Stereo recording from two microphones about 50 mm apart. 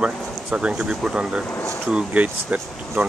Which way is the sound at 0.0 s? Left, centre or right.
Right.